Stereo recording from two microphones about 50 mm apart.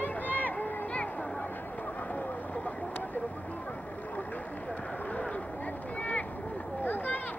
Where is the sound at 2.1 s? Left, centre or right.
Left.